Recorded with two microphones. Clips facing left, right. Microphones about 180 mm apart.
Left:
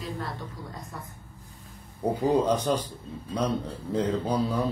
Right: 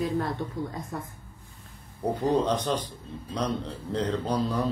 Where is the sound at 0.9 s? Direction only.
50° right (ahead or behind).